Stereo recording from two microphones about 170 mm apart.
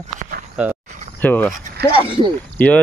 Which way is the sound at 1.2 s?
10° left (ahead or behind).